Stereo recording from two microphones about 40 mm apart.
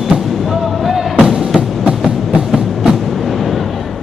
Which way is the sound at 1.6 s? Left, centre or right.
Right.